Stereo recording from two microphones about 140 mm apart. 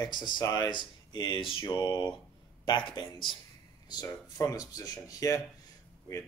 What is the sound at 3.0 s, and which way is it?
Speech, 35° left (ahead or behind).